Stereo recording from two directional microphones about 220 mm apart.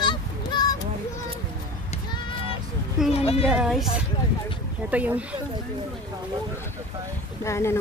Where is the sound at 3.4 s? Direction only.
Centre (ahead or behind).